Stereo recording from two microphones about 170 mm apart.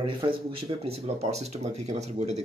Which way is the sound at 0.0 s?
30° right (ahead or behind).